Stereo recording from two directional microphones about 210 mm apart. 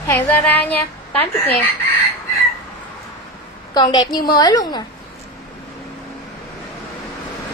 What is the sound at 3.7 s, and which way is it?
A woman's voice, 20° left (ahead or behind).